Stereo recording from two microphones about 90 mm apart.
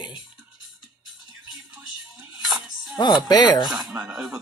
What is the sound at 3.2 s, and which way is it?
Speech, 50° left (ahead or behind).